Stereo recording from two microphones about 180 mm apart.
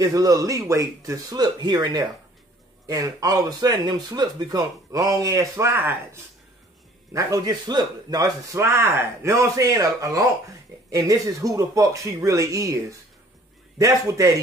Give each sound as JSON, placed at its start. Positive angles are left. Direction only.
{"t": 0.0, "sound": "a man's voice", "side_deg": -20}
{"t": 13.7, "sound": "speech", "side_deg": -20}